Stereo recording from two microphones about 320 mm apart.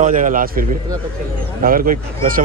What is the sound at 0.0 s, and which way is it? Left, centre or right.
A man's voice, right.